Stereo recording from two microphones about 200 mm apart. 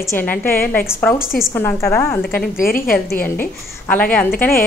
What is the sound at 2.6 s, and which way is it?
Speech, 45° left (ahead or behind).